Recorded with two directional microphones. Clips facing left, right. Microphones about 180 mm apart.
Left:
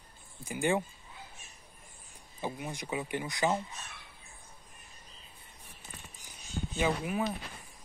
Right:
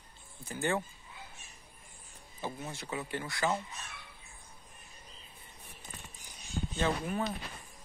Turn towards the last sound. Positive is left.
turn(degrees=5)  # may be behind; listen again after turning